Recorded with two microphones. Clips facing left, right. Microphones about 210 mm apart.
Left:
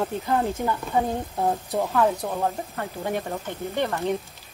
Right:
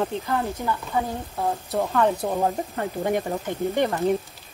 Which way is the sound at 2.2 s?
15° right (ahead or behind).